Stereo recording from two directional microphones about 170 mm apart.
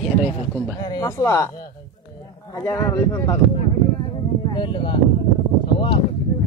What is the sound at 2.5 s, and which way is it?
Speech, 15° left (ahead or behind).